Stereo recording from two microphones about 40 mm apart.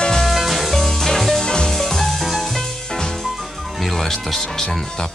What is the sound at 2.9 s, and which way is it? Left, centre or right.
Music, centre.